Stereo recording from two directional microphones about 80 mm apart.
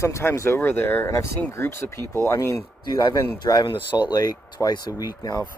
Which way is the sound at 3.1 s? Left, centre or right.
Left.